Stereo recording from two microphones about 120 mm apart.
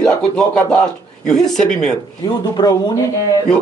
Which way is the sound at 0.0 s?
5° left (ahead or behind).